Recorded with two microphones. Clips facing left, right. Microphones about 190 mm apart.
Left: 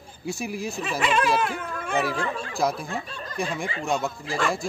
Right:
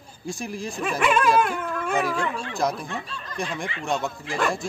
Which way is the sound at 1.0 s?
50° right (ahead or behind).